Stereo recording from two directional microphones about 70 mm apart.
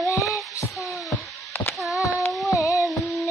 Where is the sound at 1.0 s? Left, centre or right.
Left.